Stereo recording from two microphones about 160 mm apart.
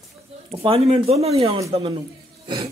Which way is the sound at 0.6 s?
40° right (ahead or behind).